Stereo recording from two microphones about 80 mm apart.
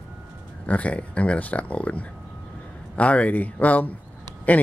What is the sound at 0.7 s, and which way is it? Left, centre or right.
Speech, centre.